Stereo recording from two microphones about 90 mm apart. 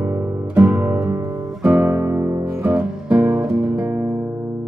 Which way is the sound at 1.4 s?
10° right (ahead or behind).